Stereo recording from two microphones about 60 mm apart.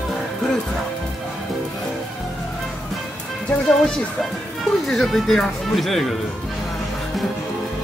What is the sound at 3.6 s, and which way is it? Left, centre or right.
Speech, centre.